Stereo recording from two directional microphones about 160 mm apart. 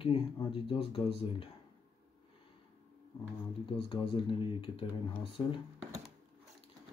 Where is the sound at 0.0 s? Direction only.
35° left (ahead or behind).